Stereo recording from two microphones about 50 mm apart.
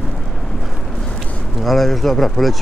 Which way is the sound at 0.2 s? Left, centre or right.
Centre.